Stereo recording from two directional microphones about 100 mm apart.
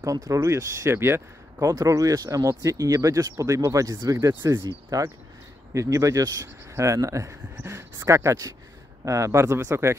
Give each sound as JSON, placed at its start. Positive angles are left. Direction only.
{"t": 0.0, "sound": "speech", "side_deg": -35}